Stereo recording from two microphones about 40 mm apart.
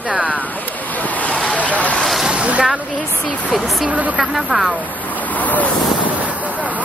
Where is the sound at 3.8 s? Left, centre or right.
Right.